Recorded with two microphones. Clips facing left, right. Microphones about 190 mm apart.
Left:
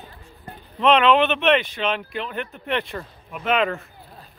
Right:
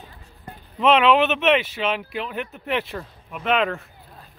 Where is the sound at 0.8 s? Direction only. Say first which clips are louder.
Even; 5° right (ahead or behind).